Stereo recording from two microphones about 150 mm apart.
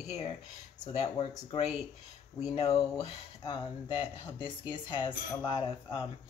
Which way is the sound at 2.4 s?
45° left (ahead or behind).